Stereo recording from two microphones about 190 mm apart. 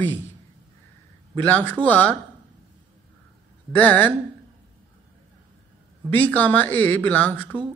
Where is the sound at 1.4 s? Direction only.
10° left (ahead or behind).